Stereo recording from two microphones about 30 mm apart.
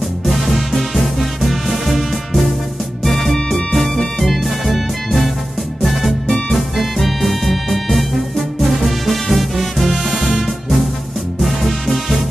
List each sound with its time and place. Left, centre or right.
0.3 s music: centre
4.2 s music: centre
6.2 s music: left
6.8 s music: centre